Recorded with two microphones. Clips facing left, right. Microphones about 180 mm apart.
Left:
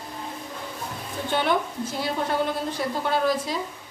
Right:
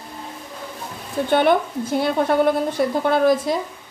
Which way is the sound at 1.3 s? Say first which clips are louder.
Right 7 dB; 60° right (ahead or behind).